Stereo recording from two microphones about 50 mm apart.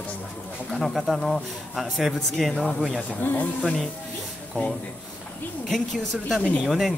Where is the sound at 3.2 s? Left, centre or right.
Left.